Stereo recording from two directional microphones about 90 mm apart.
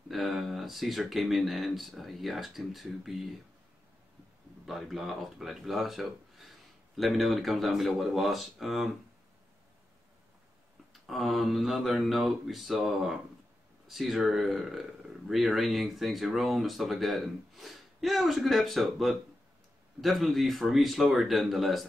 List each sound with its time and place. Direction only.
0.1 s speech: centre (ahead or behind)
4.6 s speech: 5° right (ahead or behind)
10.9 s speech: centre (ahead or behind)